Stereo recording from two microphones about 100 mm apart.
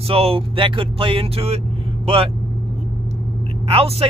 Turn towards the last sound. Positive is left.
turn(degrees=-75)  # may be behind; listen again after turning